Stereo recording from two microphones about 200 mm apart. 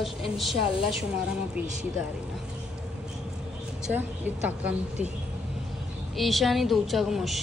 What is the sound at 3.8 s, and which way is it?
A woman's voice, 10° right (ahead or behind).